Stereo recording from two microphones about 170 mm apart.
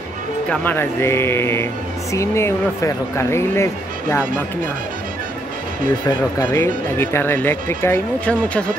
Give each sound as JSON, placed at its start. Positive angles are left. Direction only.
{"t": 0.5, "sound": "speech", "side_deg": 10}
{"t": 6.0, "sound": "speech", "side_deg": 20}